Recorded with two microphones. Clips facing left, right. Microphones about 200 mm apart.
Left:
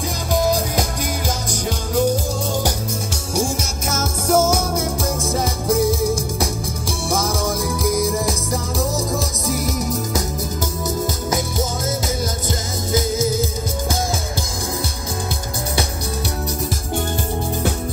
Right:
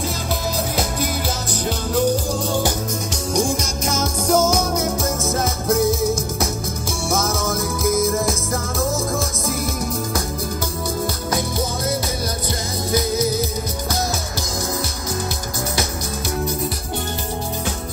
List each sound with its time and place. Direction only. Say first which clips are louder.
3.3 s music: right 1 dB; 5° left (ahead or behind)
7.1 s music: even; 10° left (ahead or behind)
12.9 s music: left 1 dB; 50° left (ahead or behind)